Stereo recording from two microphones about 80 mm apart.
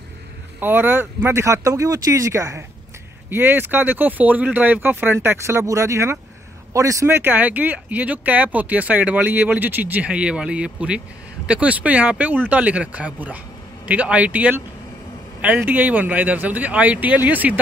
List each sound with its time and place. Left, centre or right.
0.6 s speech: right
3.3 s speech: right
7.1 s speech: right